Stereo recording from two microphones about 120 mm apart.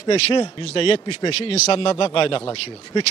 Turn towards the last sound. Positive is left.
turn(degrees=45)  # may be behind; listen again after turning